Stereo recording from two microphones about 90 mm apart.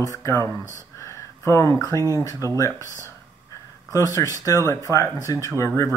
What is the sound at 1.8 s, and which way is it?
Speech, 40° left (ahead or behind).